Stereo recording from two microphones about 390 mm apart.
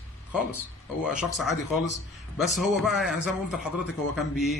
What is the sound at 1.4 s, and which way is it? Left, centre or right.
Speech, left.